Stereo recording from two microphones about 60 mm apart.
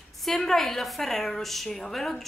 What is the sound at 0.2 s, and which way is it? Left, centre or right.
A woman's voice, centre.